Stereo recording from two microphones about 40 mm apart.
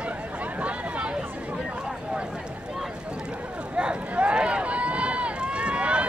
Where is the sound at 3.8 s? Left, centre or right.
Right.